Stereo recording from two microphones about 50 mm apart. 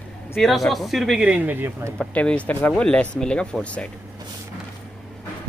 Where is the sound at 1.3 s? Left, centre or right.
Right.